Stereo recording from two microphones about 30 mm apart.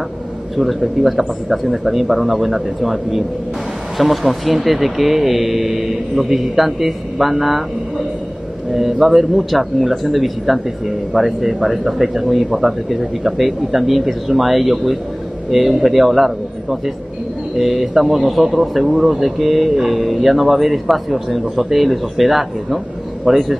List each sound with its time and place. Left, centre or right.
0.6 s a man's voice: centre
23.3 s a man's voice: centre